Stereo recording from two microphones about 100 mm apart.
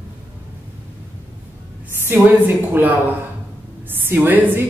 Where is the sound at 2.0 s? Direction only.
20° right (ahead or behind).